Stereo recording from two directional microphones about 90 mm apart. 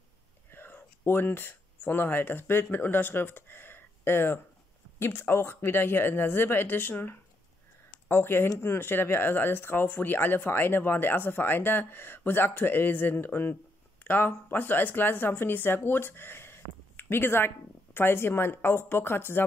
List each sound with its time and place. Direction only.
0.5 s speech: 25° left (ahead or behind)